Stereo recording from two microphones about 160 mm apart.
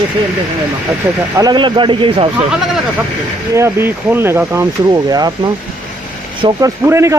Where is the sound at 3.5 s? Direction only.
15° right (ahead or behind).